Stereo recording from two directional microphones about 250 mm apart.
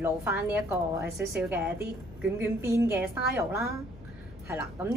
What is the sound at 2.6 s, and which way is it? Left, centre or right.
A woman's voice, centre.